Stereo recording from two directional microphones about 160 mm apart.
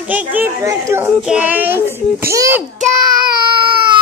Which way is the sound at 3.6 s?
30° right (ahead or behind).